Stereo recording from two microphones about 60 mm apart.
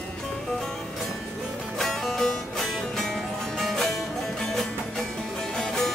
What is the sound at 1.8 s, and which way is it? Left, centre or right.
Music, centre.